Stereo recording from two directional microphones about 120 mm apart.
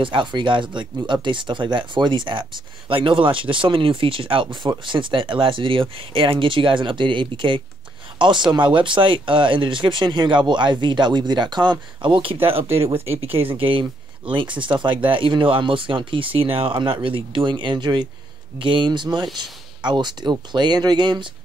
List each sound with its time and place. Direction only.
0.0 s speech: 40° right (ahead or behind)